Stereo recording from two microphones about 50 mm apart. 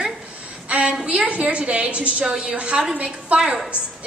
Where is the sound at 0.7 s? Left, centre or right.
Right.